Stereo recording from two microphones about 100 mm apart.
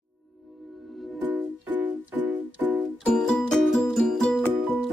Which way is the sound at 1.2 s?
15° right (ahead or behind).